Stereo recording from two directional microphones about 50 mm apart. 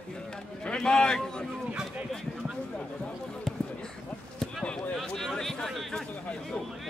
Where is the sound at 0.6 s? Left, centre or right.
Centre.